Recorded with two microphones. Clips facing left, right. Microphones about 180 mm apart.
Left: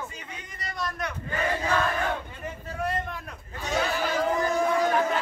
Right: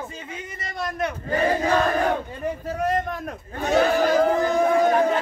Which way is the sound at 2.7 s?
40° right (ahead or behind).